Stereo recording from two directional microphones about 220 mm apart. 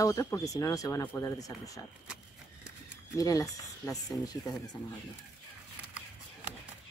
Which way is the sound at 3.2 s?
15° left (ahead or behind).